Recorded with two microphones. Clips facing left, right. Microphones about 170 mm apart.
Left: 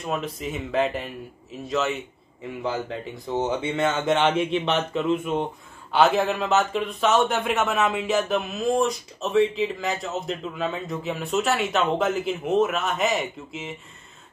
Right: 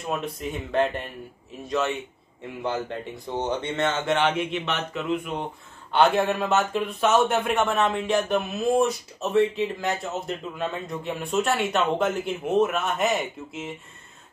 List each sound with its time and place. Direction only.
0.0 s a man's voice: centre (ahead or behind); by 5.5 s 25° left (ahead or behind)
5.9 s a man's voice: centre (ahead or behind)